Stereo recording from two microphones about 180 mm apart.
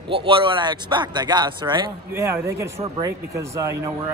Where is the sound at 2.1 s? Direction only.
15° right (ahead or behind).